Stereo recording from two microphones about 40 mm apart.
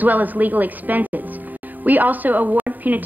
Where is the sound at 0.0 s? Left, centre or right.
Right.